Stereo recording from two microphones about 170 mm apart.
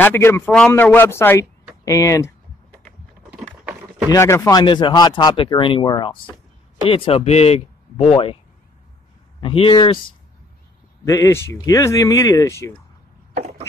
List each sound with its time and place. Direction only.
0.0 s speech: 15° left (ahead or behind)
1.9 s typing: 20° left (ahead or behind)
3.3 s a sound: 5° right (ahead or behind)
4.1 s speech: 20° left (ahead or behind); by 8.4 s 35° left (ahead or behind)
9.4 s speech: 35° left (ahead or behind)
11.1 s speech: 20° left (ahead or behind)
13.3 s a sound: 40° right (ahead or behind)